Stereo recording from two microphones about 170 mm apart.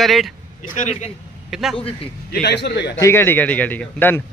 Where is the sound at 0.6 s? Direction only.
45° left (ahead or behind).